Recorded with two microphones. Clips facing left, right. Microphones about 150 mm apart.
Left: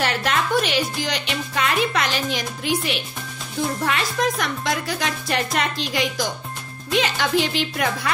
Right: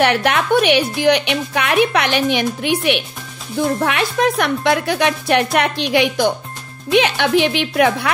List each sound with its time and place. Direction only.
0.0 s speech: 65° right (ahead or behind)